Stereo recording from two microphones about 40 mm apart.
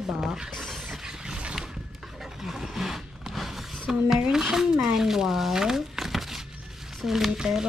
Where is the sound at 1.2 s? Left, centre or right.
Centre.